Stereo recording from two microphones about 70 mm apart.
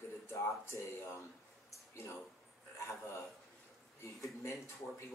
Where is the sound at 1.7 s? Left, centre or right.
Left.